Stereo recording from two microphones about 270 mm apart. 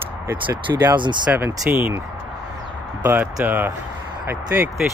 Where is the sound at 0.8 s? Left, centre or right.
Centre.